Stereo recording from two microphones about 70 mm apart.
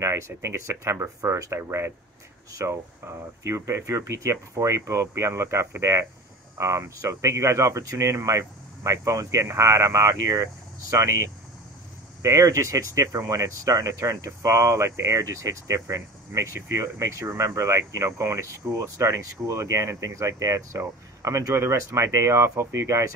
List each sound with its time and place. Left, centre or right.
0.0 s speech: right